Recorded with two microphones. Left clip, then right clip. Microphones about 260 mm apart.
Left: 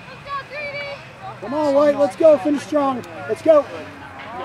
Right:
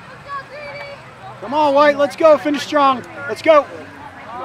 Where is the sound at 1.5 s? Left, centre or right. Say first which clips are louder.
Right 5 dB; right.